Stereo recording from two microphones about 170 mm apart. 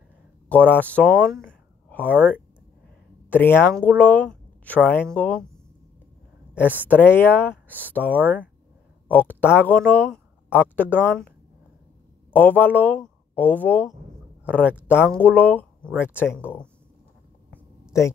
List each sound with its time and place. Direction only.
0.5 s speech: 10° left (ahead or behind)
2.1 s speech: 10° right (ahead or behind)
3.3 s speech: 10° left (ahead or behind)
6.9 s speech: 10° left (ahead or behind)
7.6 s speech: 10° right (ahead or behind)
7.9 s speech: 10° left (ahead or behind)
14.9 s speech: 10° left (ahead or behind)